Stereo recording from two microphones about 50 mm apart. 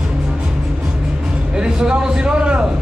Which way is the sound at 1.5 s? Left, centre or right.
Centre.